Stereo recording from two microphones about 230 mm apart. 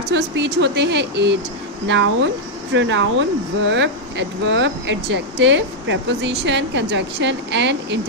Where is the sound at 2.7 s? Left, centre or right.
Right.